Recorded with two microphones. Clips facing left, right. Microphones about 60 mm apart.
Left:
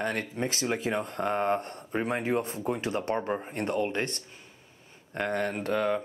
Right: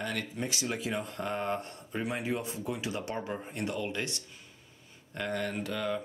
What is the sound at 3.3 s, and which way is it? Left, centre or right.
Speech, left.